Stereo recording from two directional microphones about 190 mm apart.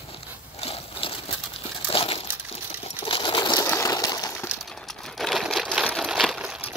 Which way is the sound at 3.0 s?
25° left (ahead or behind).